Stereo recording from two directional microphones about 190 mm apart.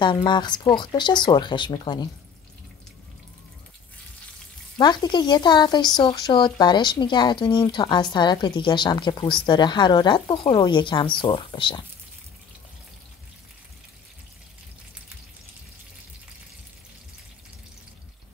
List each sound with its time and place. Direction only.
0.0 s speech: 25° left (ahead or behind)
4.7 s speech: 20° left (ahead or behind)